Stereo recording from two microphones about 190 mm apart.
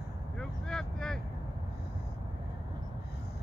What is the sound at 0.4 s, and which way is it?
Vehicle, 5° left (ahead or behind).